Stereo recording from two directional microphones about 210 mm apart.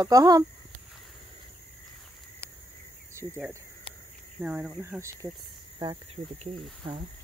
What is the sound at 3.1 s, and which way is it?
Speech, 15° right (ahead or behind).